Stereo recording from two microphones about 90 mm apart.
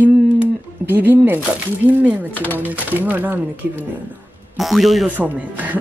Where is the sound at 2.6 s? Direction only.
20° right (ahead or behind).